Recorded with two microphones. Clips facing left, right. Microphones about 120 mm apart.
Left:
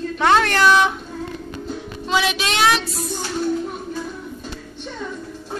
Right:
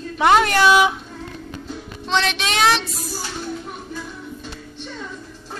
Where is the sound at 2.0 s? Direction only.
5° left (ahead or behind).